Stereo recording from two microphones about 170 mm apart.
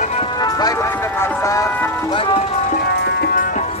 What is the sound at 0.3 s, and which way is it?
Music, 25° left (ahead or behind).